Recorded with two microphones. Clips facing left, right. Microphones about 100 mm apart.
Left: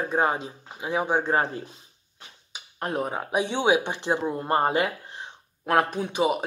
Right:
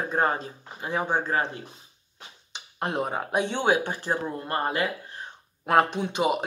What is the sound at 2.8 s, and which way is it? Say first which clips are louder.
Speech: even; centre (ahead or behind).